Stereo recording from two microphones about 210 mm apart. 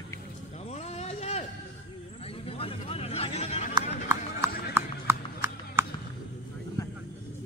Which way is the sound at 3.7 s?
15° right (ahead or behind).